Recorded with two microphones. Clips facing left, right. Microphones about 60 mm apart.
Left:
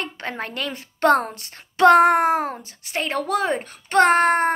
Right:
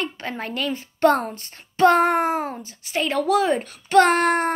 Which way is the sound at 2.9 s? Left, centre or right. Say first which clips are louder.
Right 3 dB; left.